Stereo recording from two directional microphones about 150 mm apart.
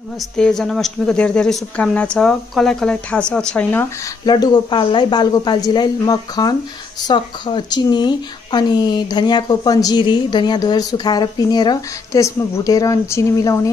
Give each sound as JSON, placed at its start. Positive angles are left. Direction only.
{"t": 0.4, "sound": "a woman's voice", "side_deg": 5}
{"t": 4.3, "sound": "speech", "side_deg": 30}